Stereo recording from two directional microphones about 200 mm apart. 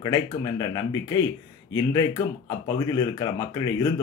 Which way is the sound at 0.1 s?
20° left (ahead or behind).